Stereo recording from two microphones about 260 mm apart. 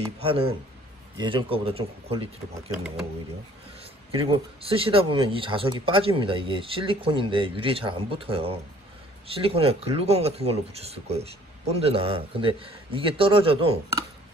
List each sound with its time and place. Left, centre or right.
0.0 s speech: right
4.1 s speech: centre